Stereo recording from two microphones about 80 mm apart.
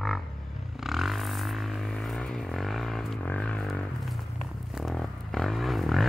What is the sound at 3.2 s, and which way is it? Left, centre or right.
Music, centre.